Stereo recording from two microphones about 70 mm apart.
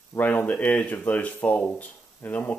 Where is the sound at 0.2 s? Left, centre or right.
Left.